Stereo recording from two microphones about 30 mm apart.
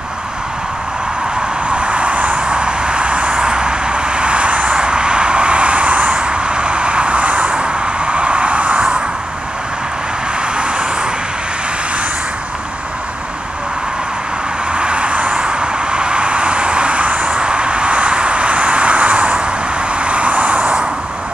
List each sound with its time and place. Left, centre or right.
1.7 s vehicle: right
2.3 s vehicle: right
4.7 s vehicle: right
10.6 s vehicle: right
14.7 s vehicle: right